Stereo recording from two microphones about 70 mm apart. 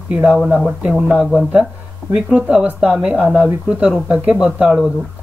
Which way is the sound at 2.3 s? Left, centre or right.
Centre.